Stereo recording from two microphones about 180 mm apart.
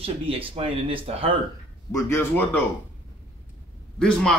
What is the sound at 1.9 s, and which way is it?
Speech, 15° left (ahead or behind).